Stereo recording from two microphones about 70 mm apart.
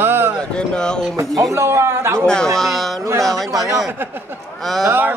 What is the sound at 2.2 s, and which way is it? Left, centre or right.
Speech, centre.